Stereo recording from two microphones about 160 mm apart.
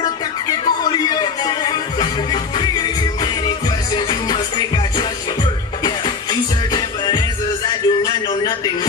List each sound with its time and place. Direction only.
0.0 s music: 25° left (ahead or behind)
6.7 s music: 25° left (ahead or behind)